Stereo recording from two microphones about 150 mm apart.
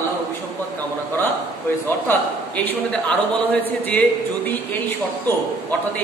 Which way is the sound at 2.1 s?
10° left (ahead or behind).